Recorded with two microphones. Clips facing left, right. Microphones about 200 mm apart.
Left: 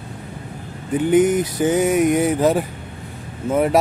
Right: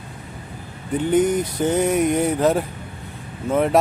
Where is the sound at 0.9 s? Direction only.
5° left (ahead or behind).